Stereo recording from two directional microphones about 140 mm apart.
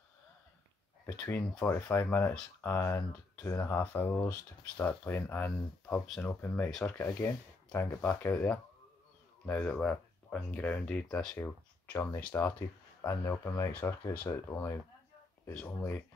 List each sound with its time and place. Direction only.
1.7 s speech: 15° left (ahead or behind)